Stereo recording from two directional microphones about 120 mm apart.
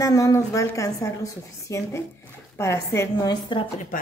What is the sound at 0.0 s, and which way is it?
A woman's voice, 25° left (ahead or behind).